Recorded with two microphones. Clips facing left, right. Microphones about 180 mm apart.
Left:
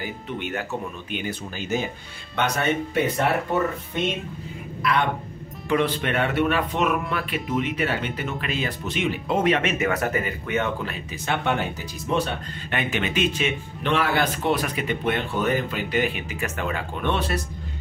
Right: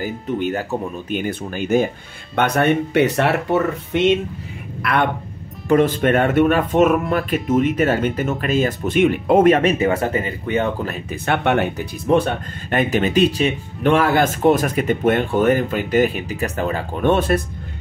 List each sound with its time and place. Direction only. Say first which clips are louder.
0.0 s speech: right 9 dB; 35° right (ahead or behind)
1.2 s speech: right 7 dB; 55° right (ahead or behind); by 4.1 s 80° right
4.8 s speech: right 3 dB; 60° right (ahead or behind)
5.7 s speech: right 8 dB; 45° right (ahead or behind)
11.2 s speech: right 6 dB; 60° right (ahead or behind)
12.1 s speech: right 8 dB; 50° right (ahead or behind)